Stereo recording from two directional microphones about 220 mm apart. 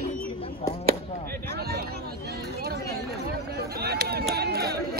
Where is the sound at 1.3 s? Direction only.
45° right (ahead or behind).